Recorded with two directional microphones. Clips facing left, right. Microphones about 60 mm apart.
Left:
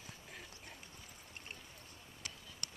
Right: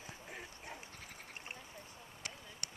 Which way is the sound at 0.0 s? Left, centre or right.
Right.